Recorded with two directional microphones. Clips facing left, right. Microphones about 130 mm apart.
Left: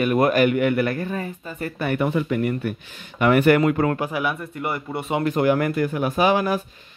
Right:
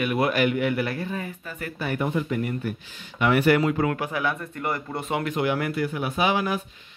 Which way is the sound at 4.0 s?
15° left (ahead or behind).